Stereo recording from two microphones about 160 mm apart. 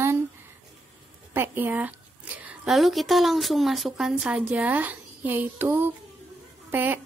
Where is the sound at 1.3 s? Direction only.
15° right (ahead or behind).